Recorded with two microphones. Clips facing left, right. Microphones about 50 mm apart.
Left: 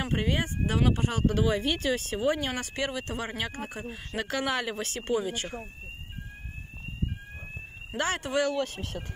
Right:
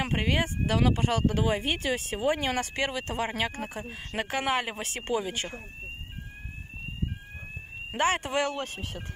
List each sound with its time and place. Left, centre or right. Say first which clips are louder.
0.0 s speech: right 1 dB; right
4.3 s speech: right 1 dB; right
5.1 s speech: left 1 dB; right
8.0 s speech: right 1 dB; right